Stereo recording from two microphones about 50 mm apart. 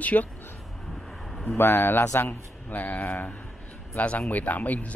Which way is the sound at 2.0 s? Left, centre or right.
Left.